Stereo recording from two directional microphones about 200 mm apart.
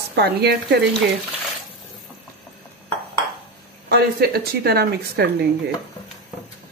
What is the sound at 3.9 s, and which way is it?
Speech, 55° right (ahead or behind).